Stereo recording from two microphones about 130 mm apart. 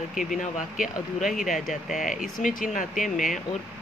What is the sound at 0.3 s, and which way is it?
Speech, 80° left.